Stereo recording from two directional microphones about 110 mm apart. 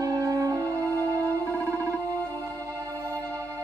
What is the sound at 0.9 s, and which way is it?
Music, 15° left (ahead or behind).